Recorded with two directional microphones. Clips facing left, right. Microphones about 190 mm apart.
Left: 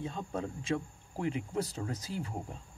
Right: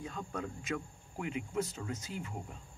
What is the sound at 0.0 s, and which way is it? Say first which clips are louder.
Speech: left 3 dB; 25° left (ahead or behind).